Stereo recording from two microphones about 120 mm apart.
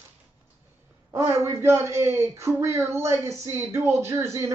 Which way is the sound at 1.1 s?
25° right (ahead or behind).